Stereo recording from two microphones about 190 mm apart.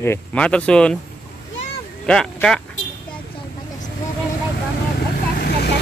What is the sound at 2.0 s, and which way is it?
Speech, 5° left (ahead or behind).